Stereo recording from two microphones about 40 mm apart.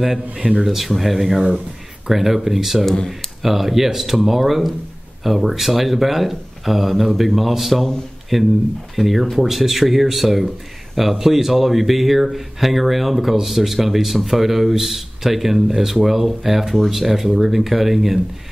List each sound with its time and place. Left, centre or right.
0.4 s speech: right
0.7 s speech: centre